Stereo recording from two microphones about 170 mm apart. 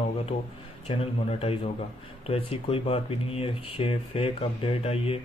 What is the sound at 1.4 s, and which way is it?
Speech, 35° left (ahead or behind).